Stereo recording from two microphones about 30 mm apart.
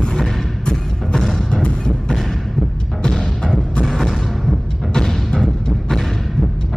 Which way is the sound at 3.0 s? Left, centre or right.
Left.